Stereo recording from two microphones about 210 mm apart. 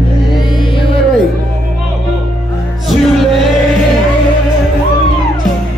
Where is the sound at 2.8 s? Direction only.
Centre (ahead or behind).